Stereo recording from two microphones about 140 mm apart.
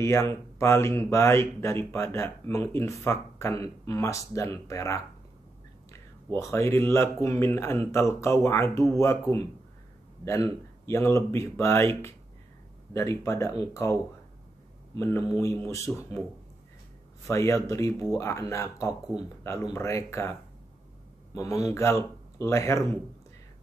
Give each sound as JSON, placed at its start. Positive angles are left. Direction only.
{"t": 0.0, "sound": "speech", "side_deg": 20}
{"t": 15.0, "sound": "speech", "side_deg": 20}
{"t": 17.3, "sound": "speech", "side_deg": 20}
{"t": 21.4, "sound": "speech", "side_deg": 20}